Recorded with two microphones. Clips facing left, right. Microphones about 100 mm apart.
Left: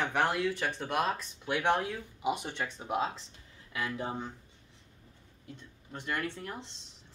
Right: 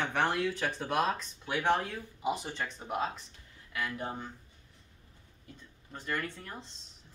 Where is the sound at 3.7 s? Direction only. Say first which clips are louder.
Left 1 dB; 25° left (ahead or behind).